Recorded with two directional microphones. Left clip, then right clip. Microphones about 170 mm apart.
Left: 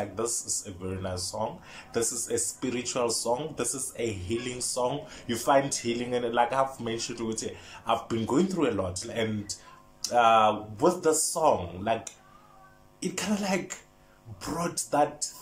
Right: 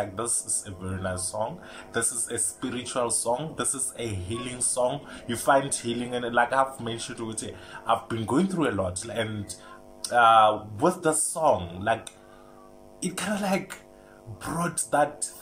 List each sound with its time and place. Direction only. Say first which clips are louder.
1.0 s speech: right 3 dB; 10° left (ahead or behind)